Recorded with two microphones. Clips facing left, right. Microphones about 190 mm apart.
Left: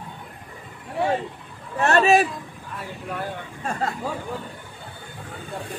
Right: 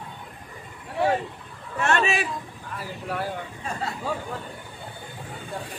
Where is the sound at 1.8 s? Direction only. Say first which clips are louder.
Left 6 dB; 40° left (ahead or behind).